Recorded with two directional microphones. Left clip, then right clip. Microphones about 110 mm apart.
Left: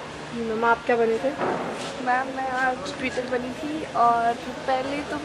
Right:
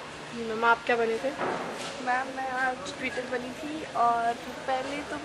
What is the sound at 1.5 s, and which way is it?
Speech, 25° left (ahead or behind).